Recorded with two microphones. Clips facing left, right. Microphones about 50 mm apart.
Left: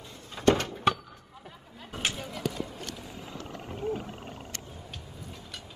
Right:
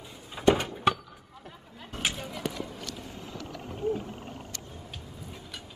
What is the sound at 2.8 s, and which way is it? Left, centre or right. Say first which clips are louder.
Wild animals: even; left.